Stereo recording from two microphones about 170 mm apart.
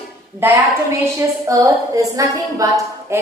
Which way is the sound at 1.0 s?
20° right (ahead or behind).